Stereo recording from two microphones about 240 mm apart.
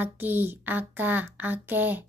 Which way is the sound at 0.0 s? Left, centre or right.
Centre.